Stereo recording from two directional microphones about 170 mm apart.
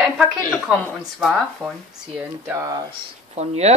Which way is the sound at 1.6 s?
Centre (ahead or behind).